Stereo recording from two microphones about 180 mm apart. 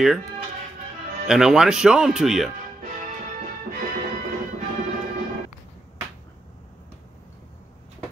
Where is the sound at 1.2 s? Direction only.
5° right (ahead or behind).